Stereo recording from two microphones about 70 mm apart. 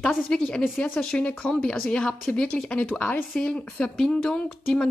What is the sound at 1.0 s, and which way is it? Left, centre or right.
Speech, centre.